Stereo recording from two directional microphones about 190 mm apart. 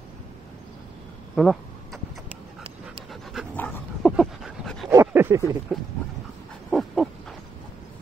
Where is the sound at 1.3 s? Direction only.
Centre (ahead or behind).